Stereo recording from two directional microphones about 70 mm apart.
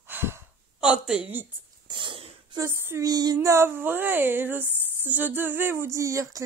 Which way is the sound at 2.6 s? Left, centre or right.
Right.